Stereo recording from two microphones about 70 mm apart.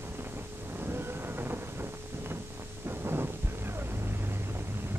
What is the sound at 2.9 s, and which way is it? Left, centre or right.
Thunder, right.